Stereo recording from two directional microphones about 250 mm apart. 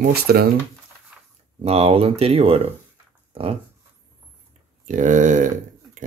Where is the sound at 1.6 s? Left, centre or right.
Right.